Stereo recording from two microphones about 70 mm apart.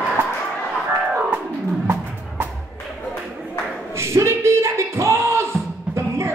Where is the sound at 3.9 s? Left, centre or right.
Right.